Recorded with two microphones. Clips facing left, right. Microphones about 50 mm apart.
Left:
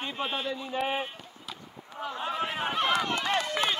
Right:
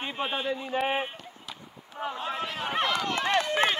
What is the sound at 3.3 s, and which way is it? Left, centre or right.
Run, right.